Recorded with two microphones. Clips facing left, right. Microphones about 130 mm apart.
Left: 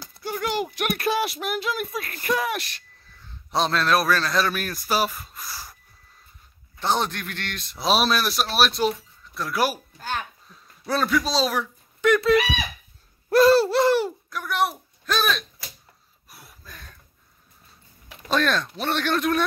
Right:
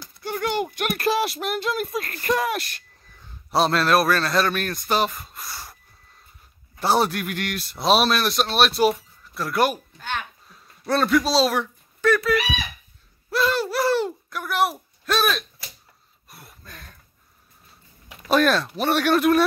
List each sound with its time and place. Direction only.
0.3 s a man's voice: 5° left (ahead or behind)
6.8 s a man's voice: 10° right (ahead or behind)
9.9 s a sound: 35° left (ahead or behind)
10.5 s speech: centre (ahead or behind)
12.0 s speech: 20° left (ahead or behind)
13.3 s a sound: 40° left (ahead or behind)
14.3 s speech: centre (ahead or behind)
16.3 s a sound: centre (ahead or behind)
18.3 s speech: 5° right (ahead or behind)